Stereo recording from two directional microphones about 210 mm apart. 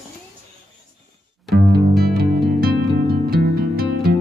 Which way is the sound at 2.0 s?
45° right (ahead or behind).